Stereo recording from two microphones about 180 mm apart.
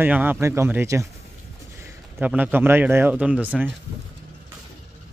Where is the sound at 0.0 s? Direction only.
10° right (ahead or behind).